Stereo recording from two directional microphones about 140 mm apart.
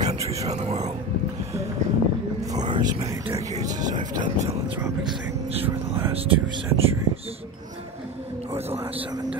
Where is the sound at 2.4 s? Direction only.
30° right (ahead or behind).